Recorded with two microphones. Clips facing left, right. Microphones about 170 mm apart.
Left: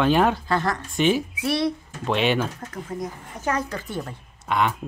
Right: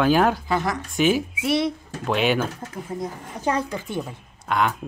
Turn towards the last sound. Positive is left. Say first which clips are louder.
# even
turn(degrees=0)  # may be behind; listen again after turning